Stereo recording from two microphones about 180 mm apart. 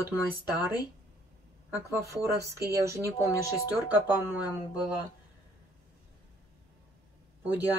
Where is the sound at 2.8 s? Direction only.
15° right (ahead or behind).